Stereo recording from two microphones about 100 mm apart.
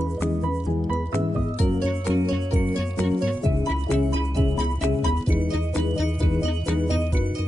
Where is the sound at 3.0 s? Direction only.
Centre (ahead or behind).